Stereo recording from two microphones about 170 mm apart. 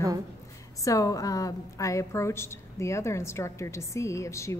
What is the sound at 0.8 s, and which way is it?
A woman's voice, 20° left (ahead or behind).